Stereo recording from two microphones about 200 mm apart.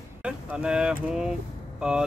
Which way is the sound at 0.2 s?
5° right (ahead or behind).